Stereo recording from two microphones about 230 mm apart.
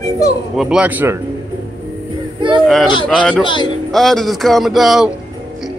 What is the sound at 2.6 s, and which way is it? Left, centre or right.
Speech, centre.